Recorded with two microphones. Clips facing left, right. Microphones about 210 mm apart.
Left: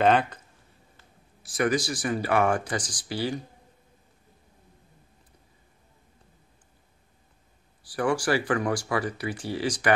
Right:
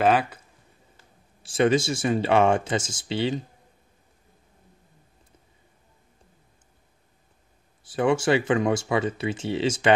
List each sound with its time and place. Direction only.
0.0 s speech: 5° right (ahead or behind)
1.4 s speech: 25° right (ahead or behind)
7.8 s speech: 25° right (ahead or behind)